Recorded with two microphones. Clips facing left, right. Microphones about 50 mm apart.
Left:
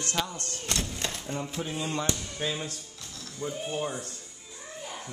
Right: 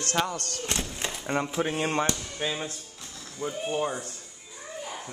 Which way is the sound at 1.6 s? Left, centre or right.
Right.